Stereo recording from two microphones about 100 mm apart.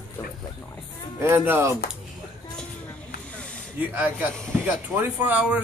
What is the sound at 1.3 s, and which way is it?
Speech, 25° right (ahead or behind).